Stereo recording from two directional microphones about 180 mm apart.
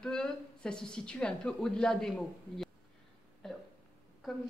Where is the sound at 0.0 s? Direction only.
5° left (ahead or behind).